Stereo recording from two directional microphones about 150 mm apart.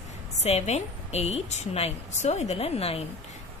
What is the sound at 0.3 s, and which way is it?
A woman's voice, 45° left (ahead or behind).